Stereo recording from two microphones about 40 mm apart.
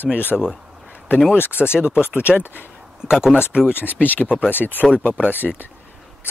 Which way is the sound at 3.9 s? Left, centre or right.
Left.